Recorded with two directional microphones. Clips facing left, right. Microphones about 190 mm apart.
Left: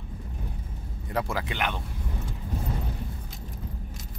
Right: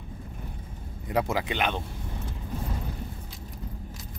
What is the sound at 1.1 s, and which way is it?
Speech, 20° right (ahead or behind).